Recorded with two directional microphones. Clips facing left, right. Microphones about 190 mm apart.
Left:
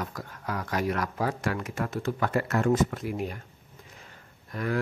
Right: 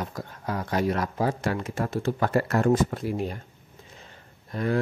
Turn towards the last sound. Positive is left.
turn(degrees=-30)  # may be behind; listen again after turning